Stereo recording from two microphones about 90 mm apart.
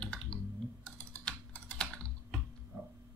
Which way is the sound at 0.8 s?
15° left (ahead or behind).